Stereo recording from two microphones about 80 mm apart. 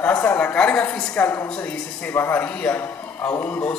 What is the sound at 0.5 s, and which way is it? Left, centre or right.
Speech, centre.